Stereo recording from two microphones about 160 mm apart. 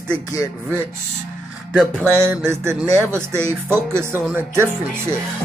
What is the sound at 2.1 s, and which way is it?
Speech, 15° right (ahead or behind).